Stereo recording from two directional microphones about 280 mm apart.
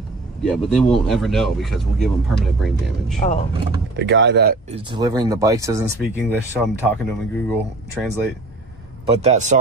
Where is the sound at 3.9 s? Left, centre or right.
Right.